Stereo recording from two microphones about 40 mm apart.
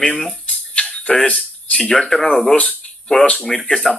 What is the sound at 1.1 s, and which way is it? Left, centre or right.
Speech, left.